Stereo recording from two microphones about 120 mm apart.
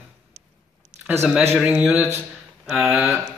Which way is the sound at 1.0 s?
10° right (ahead or behind).